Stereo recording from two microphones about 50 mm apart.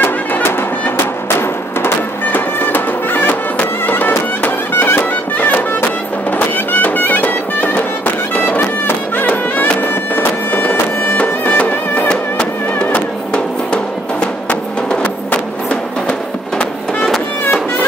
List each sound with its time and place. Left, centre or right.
0.0 s music: left
2.3 s music: left
12.1 s music: centre
14.2 s music: left